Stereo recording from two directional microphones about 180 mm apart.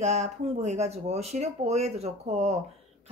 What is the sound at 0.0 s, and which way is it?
Speech, 40° right (ahead or behind).